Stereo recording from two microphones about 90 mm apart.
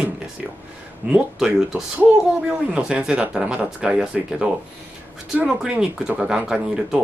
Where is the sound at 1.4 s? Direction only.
5° right (ahead or behind).